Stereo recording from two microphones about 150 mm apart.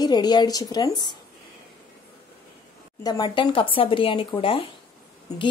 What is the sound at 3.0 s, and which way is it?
Speech, 30° left (ahead or behind).